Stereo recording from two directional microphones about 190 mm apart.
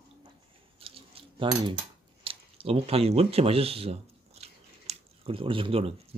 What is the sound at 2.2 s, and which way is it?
Speech, 30° right (ahead or behind).